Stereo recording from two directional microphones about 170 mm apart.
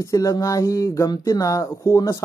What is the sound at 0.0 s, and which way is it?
Speech, 20° left (ahead or behind).